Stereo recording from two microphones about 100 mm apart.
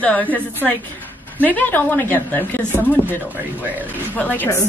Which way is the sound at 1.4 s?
15° left (ahead or behind).